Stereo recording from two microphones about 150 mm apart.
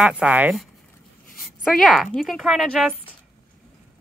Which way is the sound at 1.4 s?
Centre (ahead or behind).